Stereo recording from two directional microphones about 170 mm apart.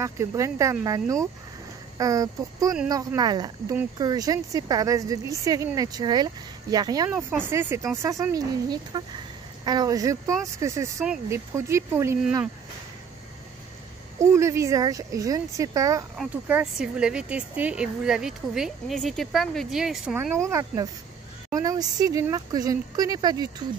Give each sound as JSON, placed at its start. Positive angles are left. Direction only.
{"t": 0.0, "sound": "a woman's voice", "side_deg": -15}
{"t": 14.3, "sound": "a woman's voice", "side_deg": -15}
{"t": 16.2, "sound": "speech", "side_deg": -5}
{"t": 20.4, "sound": "a woman's voice", "side_deg": -20}